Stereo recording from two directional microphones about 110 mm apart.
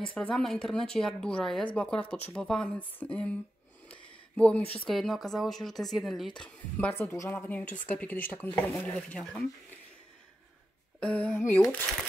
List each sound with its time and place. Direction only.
0.1 s speech: 5° left (ahead or behind)
3.9 s a sound: 10° left (ahead or behind)
4.8 s speech: centre (ahead or behind)
7.1 s speech: 25° left (ahead or behind); by 9.5 s 5° left (ahead or behind)
11.0 s speech: 10° left (ahead or behind)